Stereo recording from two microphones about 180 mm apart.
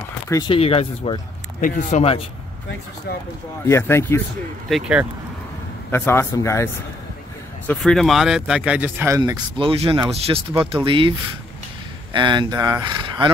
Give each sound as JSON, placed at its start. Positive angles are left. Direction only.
{"t": 0.3, "sound": "speech", "side_deg": 20}
{"t": 0.6, "sound": "speech", "side_deg": 35}
{"t": 1.6, "sound": "speech", "side_deg": 45}
{"t": 3.6, "sound": "a man's voice", "side_deg": 15}
{"t": 4.6, "sound": "speech", "side_deg": -5}
{"t": 5.9, "sound": "a man's voice", "side_deg": 15}
{"t": 7.6, "sound": "speech", "side_deg": 0}